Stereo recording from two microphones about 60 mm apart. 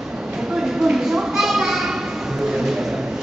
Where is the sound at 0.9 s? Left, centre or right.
Centre.